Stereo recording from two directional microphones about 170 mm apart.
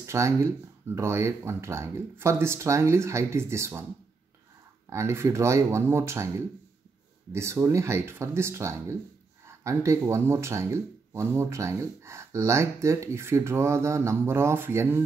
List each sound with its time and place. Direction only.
0.0 s speech: 15° right (ahead or behind)
4.8 s speech: 15° right (ahead or behind)
7.3 s speech: 15° right (ahead or behind)